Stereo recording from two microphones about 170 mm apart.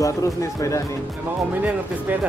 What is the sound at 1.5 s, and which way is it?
Speech, 10° right (ahead or behind).